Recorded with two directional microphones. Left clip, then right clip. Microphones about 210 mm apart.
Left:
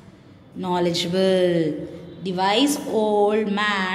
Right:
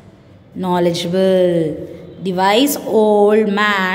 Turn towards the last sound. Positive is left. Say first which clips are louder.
# right 7 dB
turn(degrees=-30)  # may be behind; listen again after turning